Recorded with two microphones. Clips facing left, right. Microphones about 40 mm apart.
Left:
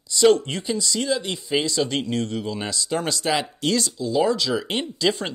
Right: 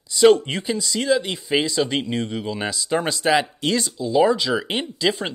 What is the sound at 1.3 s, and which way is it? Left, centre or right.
Speech, right.